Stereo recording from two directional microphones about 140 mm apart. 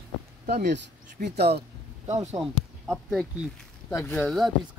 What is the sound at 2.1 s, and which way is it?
Speech, 50° right (ahead or behind).